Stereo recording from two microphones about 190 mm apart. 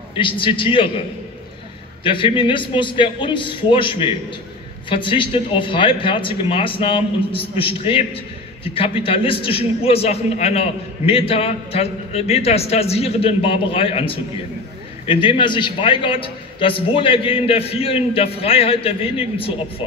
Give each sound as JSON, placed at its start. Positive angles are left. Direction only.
{"t": 0.2, "sound": "a man's voice", "side_deg": 25}
{"t": 2.0, "sound": "a man's voice", "side_deg": 25}